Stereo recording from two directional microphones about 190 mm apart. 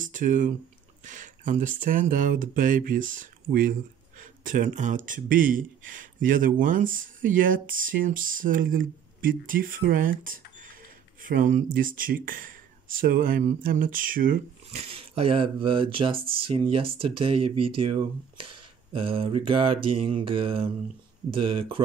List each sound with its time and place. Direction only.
0.0 s a sound: 45° right (ahead or behind)
1.0 s speech: 45° right (ahead or behind)
14.8 s speech: 30° right (ahead or behind)
18.9 s speech: 30° right (ahead or behind)